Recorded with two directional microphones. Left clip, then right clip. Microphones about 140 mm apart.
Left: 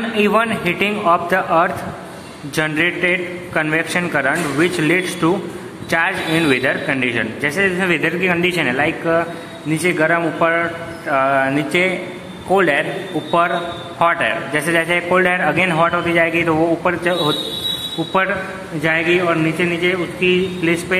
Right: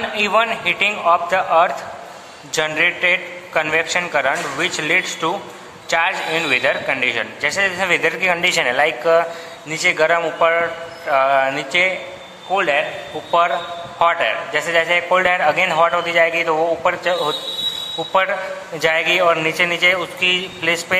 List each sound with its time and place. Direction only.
0.2 s a man's voice: 10° right (ahead or behind)
12.5 s a man's voice: 5° left (ahead or behind)
13.3 s a man's voice: 10° right (ahead or behind)
18.8 s a man's voice: 40° right (ahead or behind)